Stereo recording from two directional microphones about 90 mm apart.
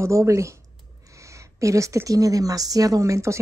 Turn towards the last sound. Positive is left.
turn(degrees=-35)  # may be behind; listen again after turning